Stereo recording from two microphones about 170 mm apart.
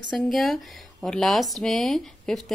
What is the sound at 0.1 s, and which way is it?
Speech, centre (ahead or behind).